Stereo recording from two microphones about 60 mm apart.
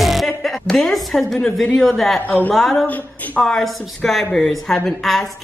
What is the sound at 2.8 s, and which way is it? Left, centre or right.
Speech, left.